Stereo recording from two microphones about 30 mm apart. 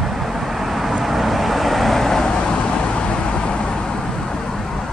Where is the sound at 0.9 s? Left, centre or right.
Centre.